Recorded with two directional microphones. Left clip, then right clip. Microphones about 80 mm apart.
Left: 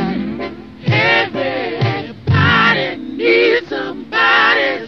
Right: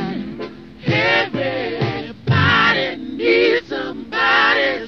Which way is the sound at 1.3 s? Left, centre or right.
Right.